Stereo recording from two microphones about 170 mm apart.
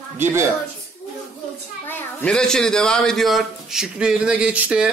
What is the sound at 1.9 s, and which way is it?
A man's voice, 10° left (ahead or behind).